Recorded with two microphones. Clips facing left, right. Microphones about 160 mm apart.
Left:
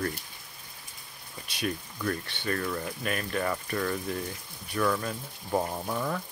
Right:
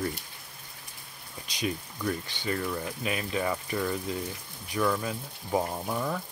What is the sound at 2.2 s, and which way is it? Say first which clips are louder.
Speech: even; 65° left (ahead or behind).